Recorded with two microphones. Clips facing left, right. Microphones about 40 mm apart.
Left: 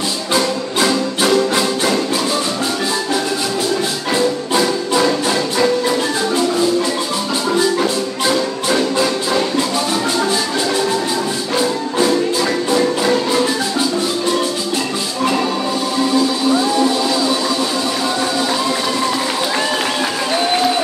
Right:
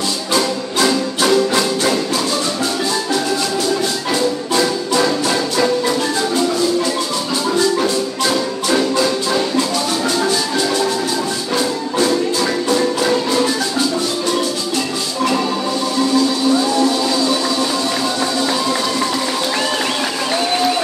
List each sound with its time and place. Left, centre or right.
0.7 s music: centre
4.1 s music: centre
8.9 s music: centre
11.5 s music: centre